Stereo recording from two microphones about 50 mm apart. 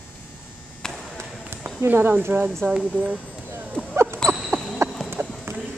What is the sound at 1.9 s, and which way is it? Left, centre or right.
Speech, right.